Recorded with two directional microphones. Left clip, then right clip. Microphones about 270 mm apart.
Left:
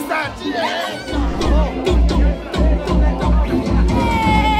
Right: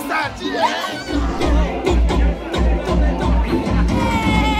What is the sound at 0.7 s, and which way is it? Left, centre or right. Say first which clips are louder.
Speech: even; centre.